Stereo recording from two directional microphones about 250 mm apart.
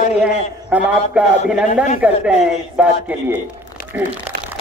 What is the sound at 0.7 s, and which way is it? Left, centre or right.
A man's voice, centre.